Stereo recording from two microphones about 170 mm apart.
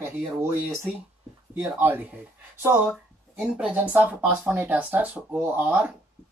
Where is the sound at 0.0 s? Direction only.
15° right (ahead or behind).